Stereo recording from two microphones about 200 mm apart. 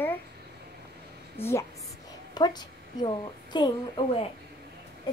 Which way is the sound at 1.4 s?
15° left (ahead or behind).